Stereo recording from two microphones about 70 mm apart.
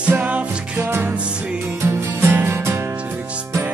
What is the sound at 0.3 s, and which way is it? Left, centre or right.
Music, centre.